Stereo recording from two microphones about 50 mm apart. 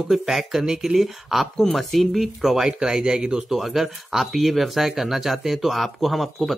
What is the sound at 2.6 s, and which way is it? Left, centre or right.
Speech, centre.